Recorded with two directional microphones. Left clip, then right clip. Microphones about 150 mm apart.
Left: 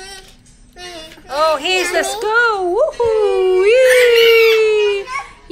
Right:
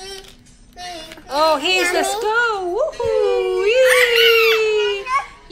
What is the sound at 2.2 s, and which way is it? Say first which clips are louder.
Wail: left 4 dB; 20° right (ahead or behind).